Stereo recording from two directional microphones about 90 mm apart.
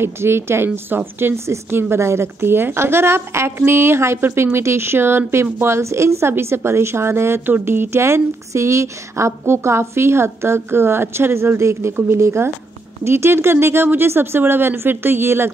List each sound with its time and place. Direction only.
0.0 s a woman's voice: 25° right (ahead or behind)